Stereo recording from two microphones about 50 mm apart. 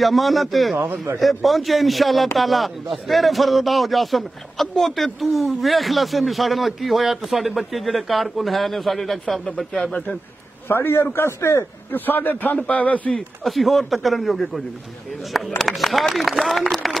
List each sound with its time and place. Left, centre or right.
0.0 s speech: centre
10.7 s a man's voice: left
11.1 s speech: left
11.9 s a man's voice: left
13.4 s a man's voice: centre